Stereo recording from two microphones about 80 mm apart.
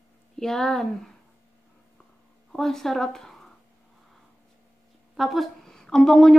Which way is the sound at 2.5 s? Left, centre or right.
Centre.